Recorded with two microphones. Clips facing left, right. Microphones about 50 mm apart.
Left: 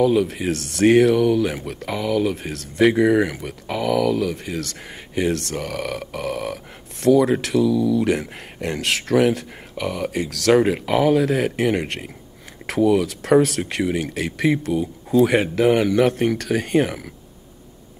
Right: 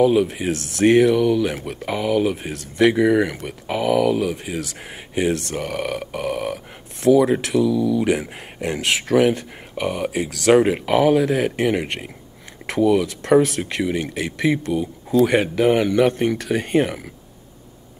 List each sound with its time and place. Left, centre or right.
0.0 s speech: centre
3.4 s speech: centre
9.8 s speech: centre